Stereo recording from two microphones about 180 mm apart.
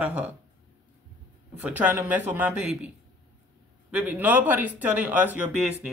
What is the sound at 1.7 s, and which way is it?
Speech, 10° right (ahead or behind).